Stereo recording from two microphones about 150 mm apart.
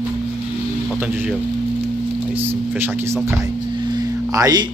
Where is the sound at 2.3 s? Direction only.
15° right (ahead or behind).